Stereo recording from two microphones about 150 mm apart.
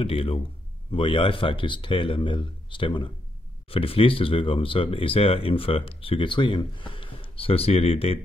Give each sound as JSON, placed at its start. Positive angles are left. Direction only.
{"t": 0.0, "sound": "speech", "side_deg": 40}